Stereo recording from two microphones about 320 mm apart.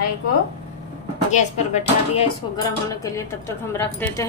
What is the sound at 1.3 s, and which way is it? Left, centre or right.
A woman's voice, left.